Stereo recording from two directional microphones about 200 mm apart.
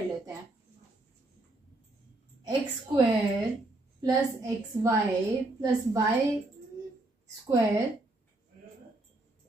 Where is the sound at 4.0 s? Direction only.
15° right (ahead or behind).